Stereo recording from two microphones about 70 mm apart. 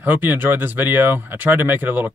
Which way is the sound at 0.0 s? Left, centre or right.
Right.